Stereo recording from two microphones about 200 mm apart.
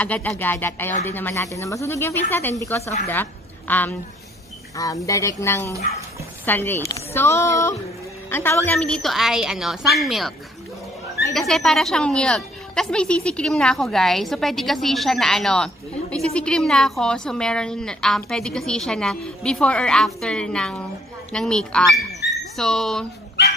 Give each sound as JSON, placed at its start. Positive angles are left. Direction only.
{"t": 0.0, "sound": "a woman's voice", "side_deg": 5}
{"t": 11.3, "sound": "a woman's voice", "side_deg": 0}
{"t": 22.2, "sound": "dog", "side_deg": 60}
{"t": 22.6, "sound": "a woman's voice", "side_deg": 0}
{"t": 23.4, "sound": "dog", "side_deg": 60}